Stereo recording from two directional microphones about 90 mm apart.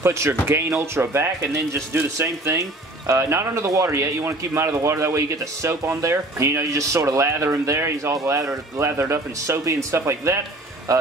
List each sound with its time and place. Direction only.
0.0 s speech: 30° right (ahead or behind)